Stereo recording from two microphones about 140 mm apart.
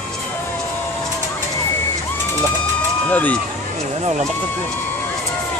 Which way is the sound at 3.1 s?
10° left (ahead or behind).